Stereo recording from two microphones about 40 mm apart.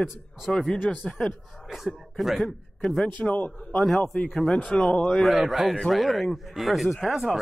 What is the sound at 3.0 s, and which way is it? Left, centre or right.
Speech, left.